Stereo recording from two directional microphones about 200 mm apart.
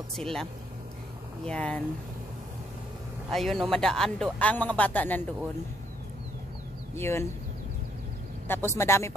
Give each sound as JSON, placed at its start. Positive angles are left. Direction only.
{"t": 0.1, "sound": "a man's voice", "side_deg": 0}
{"t": 3.3, "sound": "a man's voice", "side_deg": 0}
{"t": 7.0, "sound": "speech", "side_deg": 10}
{"t": 8.5, "sound": "speech", "side_deg": 10}